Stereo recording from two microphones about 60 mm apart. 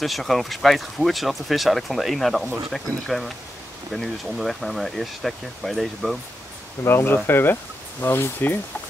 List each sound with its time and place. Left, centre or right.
0.0 s speech: centre
6.8 s speech: left